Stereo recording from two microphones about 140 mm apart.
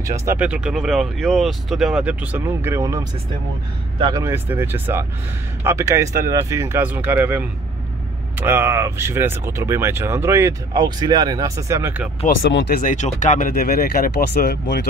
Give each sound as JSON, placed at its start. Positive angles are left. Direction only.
{"t": 0.0, "sound": "speech", "side_deg": -20}
{"t": 0.4, "sound": "speech", "side_deg": -5}
{"t": 10.8, "sound": "speech", "side_deg": -30}
{"t": 12.7, "sound": "speech", "side_deg": 60}